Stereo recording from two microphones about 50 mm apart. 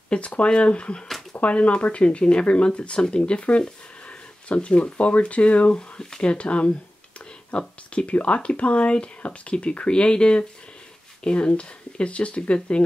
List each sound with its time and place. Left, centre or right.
0.1 s speech: left